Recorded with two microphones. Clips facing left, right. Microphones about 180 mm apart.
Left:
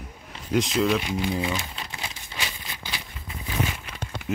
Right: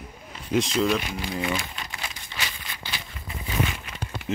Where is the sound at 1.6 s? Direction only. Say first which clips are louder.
Even; 20° left (ahead or behind).